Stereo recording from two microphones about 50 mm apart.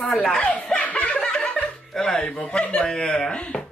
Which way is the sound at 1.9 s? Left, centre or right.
Centre.